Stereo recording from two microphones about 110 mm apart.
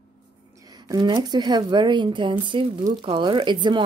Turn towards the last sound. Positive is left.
turn(degrees=-45)  # may be behind; listen again after turning